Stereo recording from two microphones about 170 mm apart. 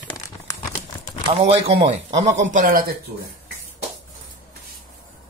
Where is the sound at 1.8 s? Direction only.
40° right (ahead or behind).